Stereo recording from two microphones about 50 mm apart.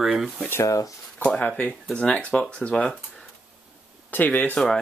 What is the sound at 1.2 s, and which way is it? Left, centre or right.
Speech, left.